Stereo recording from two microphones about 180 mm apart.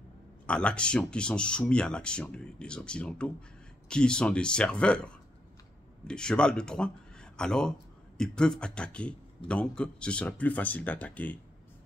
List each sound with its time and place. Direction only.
0.5 s speech: 5° left (ahead or behind)